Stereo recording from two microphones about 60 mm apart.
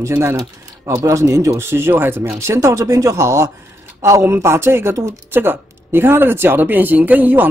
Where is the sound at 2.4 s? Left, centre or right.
Right.